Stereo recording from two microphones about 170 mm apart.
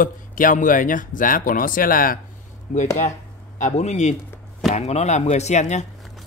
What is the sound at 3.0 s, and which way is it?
Speech, 45° left (ahead or behind).